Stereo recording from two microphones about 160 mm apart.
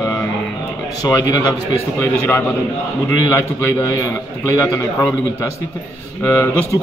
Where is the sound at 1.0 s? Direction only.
20° left (ahead or behind).